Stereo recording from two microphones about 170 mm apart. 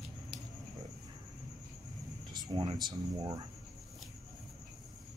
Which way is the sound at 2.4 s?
25° right (ahead or behind).